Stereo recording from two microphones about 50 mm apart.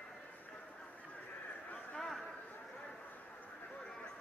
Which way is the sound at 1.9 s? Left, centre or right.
Centre.